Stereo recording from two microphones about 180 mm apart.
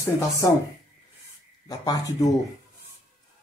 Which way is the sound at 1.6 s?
20° left (ahead or behind).